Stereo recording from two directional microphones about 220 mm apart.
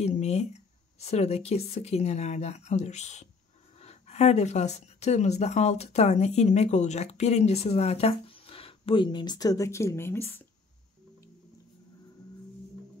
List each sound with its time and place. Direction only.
0.0 s speech: 30° left (ahead or behind); by 10.4 s 10° left (ahead or behind)